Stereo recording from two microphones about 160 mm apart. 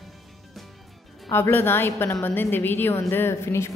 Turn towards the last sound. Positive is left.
turn(degrees=15)  # may be behind; listen again after turning